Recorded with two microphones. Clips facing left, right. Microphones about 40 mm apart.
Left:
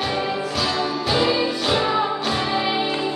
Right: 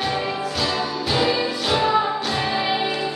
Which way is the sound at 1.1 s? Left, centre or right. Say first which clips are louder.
Left 1 dB; centre.